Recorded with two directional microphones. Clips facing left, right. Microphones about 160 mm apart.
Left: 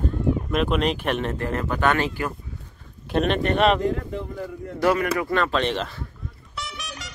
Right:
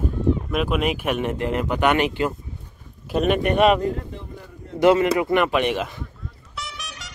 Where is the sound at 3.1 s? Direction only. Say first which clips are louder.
Right 2 dB; 10° right (ahead or behind).